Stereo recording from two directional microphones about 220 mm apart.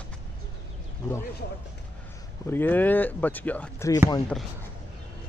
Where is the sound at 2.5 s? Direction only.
10° left (ahead or behind).